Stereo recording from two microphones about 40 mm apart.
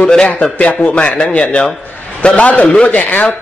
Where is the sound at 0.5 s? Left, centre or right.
Left.